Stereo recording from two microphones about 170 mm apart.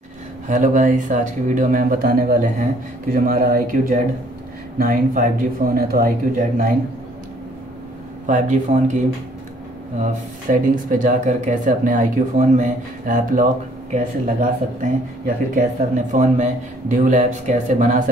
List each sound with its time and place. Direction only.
0.5 s speech: 50° right (ahead or behind)
8.3 s speech: 50° right (ahead or behind)
10.5 s speech: 50° right (ahead or behind)